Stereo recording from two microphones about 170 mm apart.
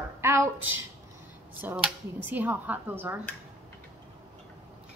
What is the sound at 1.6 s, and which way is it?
A woman's voice, 10° right (ahead or behind).